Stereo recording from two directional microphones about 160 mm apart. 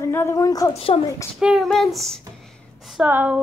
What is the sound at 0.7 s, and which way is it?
Speech, 40° left (ahead or behind).